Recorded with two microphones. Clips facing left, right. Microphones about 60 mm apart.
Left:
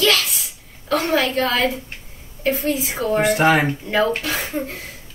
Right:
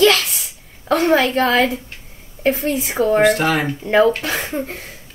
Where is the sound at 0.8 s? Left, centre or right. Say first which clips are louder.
Right 4 dB; right.